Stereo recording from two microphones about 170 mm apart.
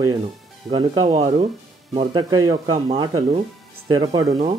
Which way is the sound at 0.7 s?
25° right (ahead or behind).